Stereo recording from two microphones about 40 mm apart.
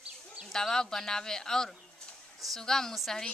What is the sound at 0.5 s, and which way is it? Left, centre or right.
Speech, centre.